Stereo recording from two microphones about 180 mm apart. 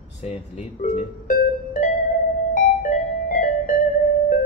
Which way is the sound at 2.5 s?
45° left (ahead or behind).